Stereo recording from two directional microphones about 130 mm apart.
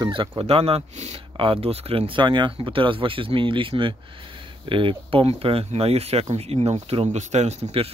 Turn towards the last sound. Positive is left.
turn(degrees=-55)  # may be behind; listen again after turning